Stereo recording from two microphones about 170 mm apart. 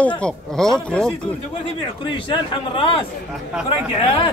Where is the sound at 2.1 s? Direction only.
30° left (ahead or behind).